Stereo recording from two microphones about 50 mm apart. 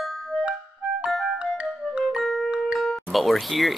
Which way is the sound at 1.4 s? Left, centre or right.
Centre.